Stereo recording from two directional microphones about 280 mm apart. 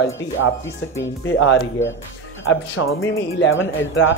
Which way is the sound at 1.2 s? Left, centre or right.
Left.